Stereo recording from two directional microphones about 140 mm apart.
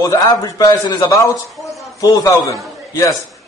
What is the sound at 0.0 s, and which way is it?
A man's voice, 25° left (ahead or behind).